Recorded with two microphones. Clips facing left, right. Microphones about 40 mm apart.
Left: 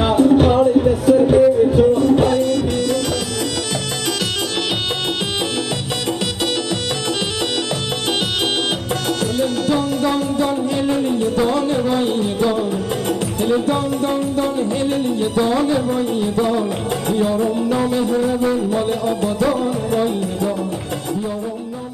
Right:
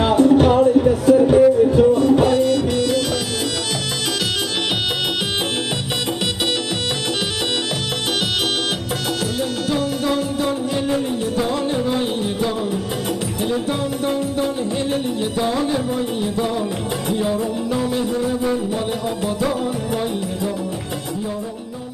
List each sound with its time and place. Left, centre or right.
0.0 s music: centre
9.2 s music: left
11.7 s music: centre
17.1 s music: centre
17.4 s music: centre